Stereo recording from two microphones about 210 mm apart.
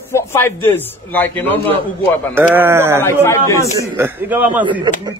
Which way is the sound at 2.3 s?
10° right (ahead or behind).